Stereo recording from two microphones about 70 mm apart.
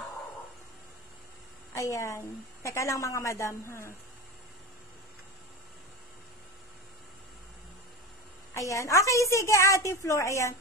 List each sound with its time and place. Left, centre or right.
1.7 s a woman's voice: left
8.5 s a woman's voice: left